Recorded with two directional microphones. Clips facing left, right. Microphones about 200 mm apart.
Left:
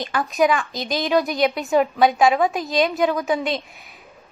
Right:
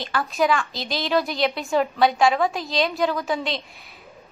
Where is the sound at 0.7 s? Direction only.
45° left (ahead or behind).